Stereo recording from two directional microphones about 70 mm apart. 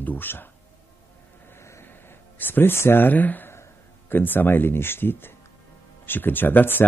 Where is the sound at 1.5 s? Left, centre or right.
Left.